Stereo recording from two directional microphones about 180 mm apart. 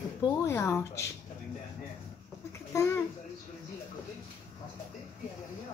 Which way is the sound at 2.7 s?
15° left (ahead or behind).